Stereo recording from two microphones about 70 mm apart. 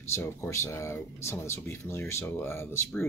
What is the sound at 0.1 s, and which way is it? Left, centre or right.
Speech, left.